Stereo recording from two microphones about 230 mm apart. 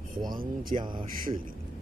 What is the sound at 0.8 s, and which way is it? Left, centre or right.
Speech, centre.